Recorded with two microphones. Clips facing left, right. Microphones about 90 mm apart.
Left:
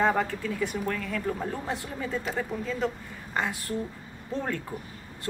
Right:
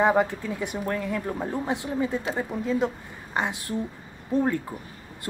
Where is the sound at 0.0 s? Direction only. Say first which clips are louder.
Right 4 dB; 15° right (ahead or behind).